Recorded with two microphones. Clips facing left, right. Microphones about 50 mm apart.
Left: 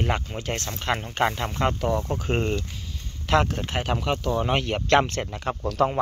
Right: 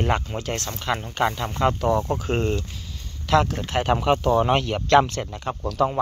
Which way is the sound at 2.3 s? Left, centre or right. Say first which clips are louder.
Right 1 dB; centre.